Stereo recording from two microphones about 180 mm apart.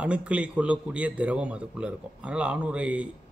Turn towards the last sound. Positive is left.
turn(degrees=-5)  # may be behind; listen again after turning